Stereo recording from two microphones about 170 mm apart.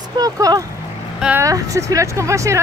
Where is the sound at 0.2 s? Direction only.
20° right (ahead or behind).